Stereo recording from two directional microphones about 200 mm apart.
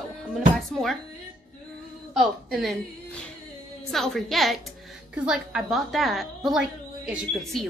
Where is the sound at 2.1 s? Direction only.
Centre (ahead or behind).